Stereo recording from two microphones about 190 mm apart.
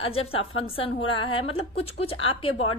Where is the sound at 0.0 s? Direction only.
30° left (ahead or behind).